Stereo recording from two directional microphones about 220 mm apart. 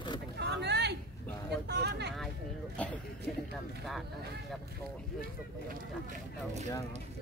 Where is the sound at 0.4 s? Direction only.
50° right (ahead or behind).